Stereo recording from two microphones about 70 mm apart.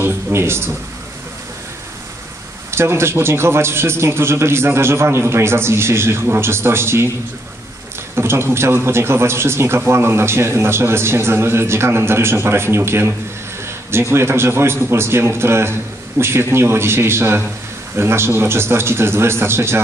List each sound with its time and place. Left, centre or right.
0.0 s speech: right
2.7 s a man's voice: right
8.2 s a man's voice: right